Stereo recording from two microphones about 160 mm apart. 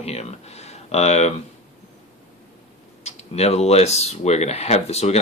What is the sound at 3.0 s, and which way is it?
Speech, 40° left (ahead or behind).